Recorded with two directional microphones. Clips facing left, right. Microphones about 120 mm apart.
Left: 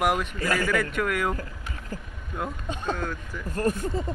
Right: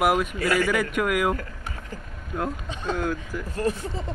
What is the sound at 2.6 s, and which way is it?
Speech, 50° left (ahead or behind).